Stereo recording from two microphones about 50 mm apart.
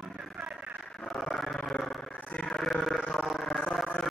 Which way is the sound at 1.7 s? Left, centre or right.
Centre.